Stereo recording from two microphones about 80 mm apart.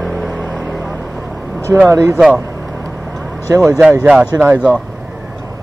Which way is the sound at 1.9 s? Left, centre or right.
Right.